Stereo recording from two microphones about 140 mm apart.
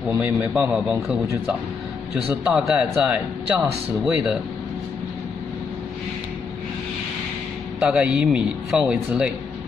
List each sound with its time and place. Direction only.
0.2 s a man's voice: 10° right (ahead or behind)
2.4 s speech: 5° right (ahead or behind)
7.8 s a man's voice: 5° right (ahead or behind)